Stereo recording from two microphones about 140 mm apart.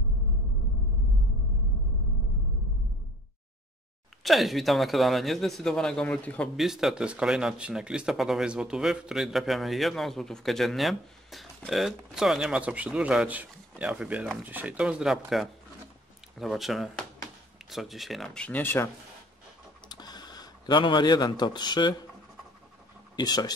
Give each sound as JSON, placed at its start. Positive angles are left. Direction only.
{"t": 4.2, "sound": "speech", "side_deg": 0}
{"t": 6.5, "sound": "speech", "side_deg": 0}
{"t": 19.9, "sound": "speech", "side_deg": 30}
{"t": 23.1, "sound": "speech", "side_deg": 30}